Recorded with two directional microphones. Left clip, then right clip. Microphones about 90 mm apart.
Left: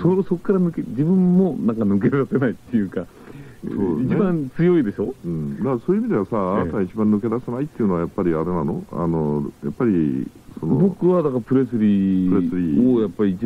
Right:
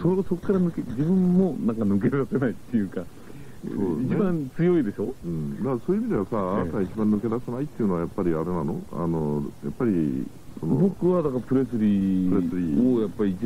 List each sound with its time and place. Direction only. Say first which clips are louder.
0.0 s a man's voice: left 5 dB; 30° left (ahead or behind)